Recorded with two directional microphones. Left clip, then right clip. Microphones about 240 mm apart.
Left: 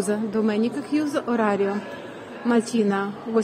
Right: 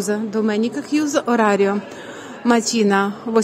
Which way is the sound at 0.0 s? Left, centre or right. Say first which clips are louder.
Right 3 dB; centre.